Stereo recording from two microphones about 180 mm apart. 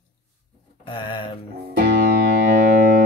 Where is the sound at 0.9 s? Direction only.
25° left (ahead or behind).